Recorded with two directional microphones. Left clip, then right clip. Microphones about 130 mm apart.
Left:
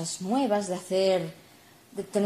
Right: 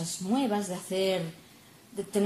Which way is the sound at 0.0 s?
40° left (ahead or behind).